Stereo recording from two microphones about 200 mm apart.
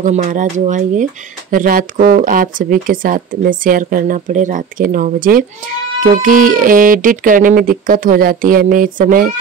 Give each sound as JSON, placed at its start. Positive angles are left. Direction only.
{"t": 0.0, "sound": "speech", "side_deg": -35}